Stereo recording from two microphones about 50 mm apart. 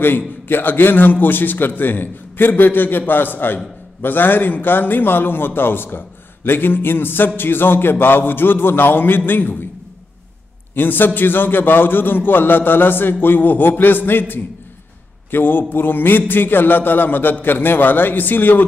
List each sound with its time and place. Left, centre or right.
0.5 s a man's voice: left
10.7 s a man's voice: left